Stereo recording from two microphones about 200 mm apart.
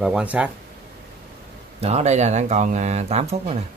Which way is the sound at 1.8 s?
35° right (ahead or behind).